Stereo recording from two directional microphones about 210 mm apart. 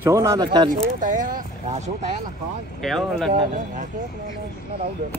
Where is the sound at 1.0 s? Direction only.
40° right (ahead or behind).